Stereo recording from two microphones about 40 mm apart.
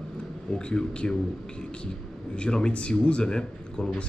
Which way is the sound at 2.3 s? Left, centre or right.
Left.